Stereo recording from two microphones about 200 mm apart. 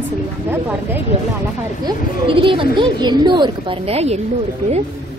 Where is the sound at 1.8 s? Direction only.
25° right (ahead or behind).